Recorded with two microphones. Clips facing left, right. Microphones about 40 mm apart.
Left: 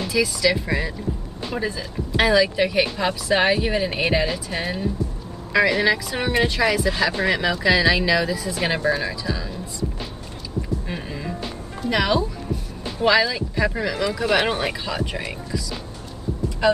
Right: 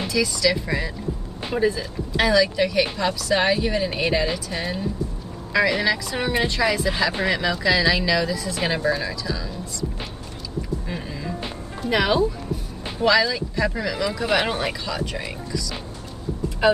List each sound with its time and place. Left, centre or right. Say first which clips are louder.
0.1 s speech: left 1 dB; centre
1.5 s speech: right 5 dB; centre
2.1 s speech: left 1 dB; centre
5.5 s speech: left 2 dB; centre
10.9 s music: left 1 dB; centre
11.8 s speech: right 1 dB; centre
13.0 s speech: even; centre
16.6 s speech: right 1 dB; centre